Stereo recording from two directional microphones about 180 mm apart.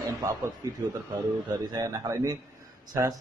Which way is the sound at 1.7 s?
20° right (ahead or behind).